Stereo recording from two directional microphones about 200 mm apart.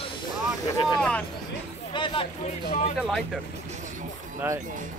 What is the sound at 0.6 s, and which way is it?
Speech, 20° left (ahead or behind).